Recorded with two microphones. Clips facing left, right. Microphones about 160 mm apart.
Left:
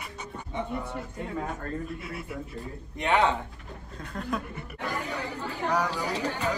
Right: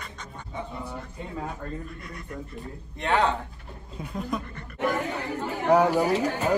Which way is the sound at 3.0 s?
20° left (ahead or behind).